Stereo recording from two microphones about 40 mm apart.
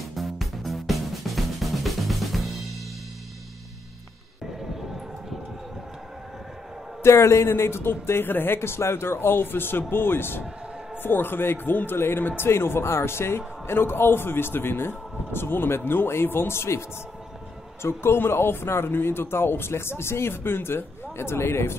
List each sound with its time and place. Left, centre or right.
0.0 s music: centre
7.0 s speech: left
13.7 s speech: left
17.8 s speech: left